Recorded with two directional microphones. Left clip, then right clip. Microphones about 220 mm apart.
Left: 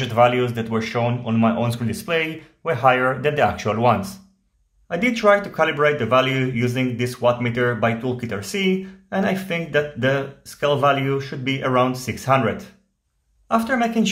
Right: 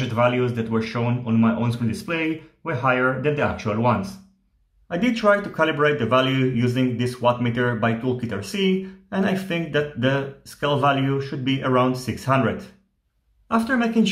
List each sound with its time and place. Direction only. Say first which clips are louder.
0.1 s speech: left 4 dB; 20° left (ahead or behind)